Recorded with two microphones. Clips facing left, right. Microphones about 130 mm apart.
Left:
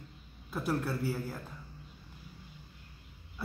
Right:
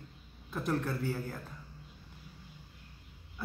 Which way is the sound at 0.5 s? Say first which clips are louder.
Even; 10° left (ahead or behind).